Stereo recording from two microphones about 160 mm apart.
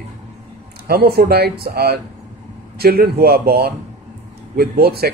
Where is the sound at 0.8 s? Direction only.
75° right (ahead or behind).